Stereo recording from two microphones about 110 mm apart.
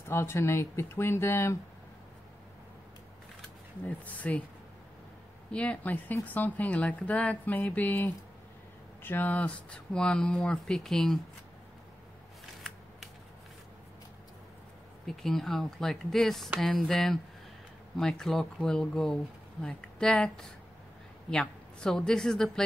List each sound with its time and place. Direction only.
0.0 s speech: 25° left (ahead or behind)
3.8 s speech: 15° left (ahead or behind)
5.5 s speech: 10° left (ahead or behind)
15.0 s a woman's voice: 5° left (ahead or behind)